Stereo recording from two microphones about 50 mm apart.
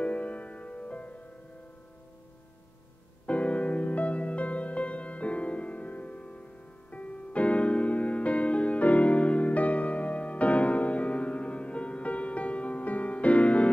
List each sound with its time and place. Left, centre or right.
0.0 s music: left
3.3 s music: left